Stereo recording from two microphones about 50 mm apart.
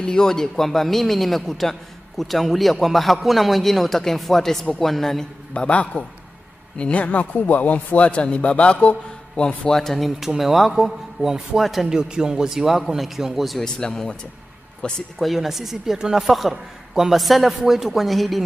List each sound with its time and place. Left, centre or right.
0.0 s a man's voice: centre
5.5 s a man's voice: left
9.7 s a man's voice: centre
11.9 s a man's voice: centre
13.7 s a man's voice: centre
15.1 s a man's voice: centre